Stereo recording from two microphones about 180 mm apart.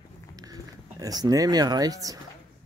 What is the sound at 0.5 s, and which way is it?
Speech, 20° right (ahead or behind).